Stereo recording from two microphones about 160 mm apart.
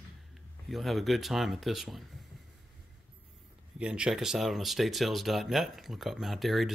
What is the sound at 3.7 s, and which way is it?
Speech, 5° right (ahead or behind).